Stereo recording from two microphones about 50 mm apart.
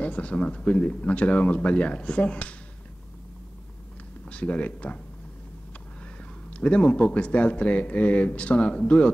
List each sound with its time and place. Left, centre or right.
0.0 s speech: left
4.3 s speech: left
6.5 s speech: left